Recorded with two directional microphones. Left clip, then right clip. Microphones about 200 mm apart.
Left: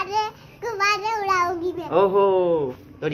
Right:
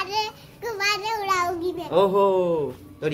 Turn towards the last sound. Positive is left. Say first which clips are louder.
# left 1 dB
turn(degrees=-10)  # may be behind; listen again after turning